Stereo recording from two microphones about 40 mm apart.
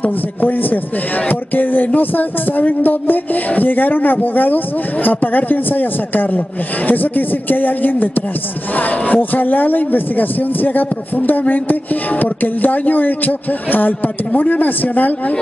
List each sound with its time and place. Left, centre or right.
0.0 s speech: left